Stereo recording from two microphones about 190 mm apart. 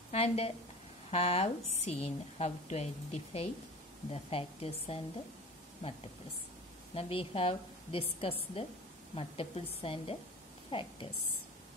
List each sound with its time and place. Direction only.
0.1 s a woman's voice: 30° left (ahead or behind)
6.9 s a woman's voice: 30° left (ahead or behind)